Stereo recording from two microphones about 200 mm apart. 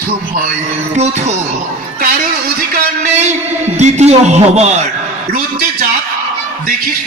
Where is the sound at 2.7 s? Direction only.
35° right (ahead or behind).